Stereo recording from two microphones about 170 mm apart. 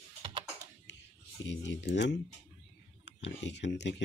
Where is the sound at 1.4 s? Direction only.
90° left.